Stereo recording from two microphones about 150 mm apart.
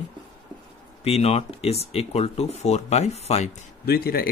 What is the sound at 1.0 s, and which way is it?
Speech, 45° left (ahead or behind).